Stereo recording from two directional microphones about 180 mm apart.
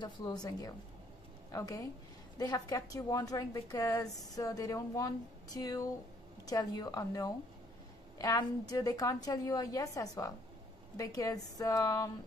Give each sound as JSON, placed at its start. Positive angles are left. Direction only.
{"t": 0.0, "sound": "a woman's voice", "side_deg": 20}